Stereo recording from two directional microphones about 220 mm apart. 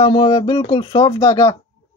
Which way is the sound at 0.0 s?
20° left (ahead or behind).